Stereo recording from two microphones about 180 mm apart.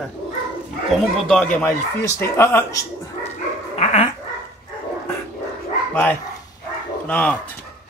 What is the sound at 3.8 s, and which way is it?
Dog, 35° left (ahead or behind).